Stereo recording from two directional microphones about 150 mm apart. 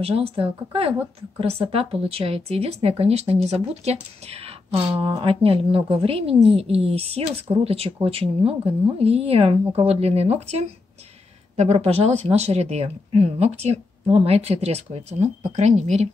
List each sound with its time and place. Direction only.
0.0 s speech: 40° right (ahead or behind)